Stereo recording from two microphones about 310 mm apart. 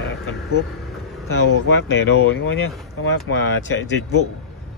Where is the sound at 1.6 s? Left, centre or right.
Left.